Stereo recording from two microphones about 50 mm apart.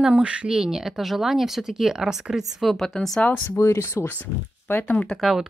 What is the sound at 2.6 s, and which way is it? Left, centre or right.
Speech, centre.